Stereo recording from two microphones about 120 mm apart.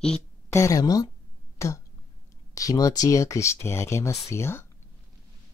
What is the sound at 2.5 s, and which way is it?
Speech, 30° left (ahead or behind).